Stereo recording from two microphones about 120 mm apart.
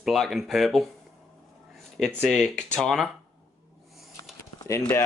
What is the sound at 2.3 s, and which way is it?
Speech, 5° left (ahead or behind).